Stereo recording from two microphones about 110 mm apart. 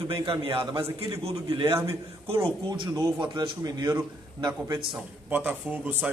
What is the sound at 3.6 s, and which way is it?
A man's voice, 30° right (ahead or behind).